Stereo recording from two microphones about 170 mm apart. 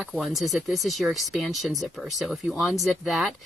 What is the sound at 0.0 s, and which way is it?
Speech, centre (ahead or behind).